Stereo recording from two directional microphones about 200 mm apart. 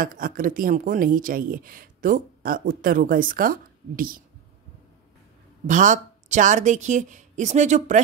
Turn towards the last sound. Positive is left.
turn(degrees=-35)  # may be behind; listen again after turning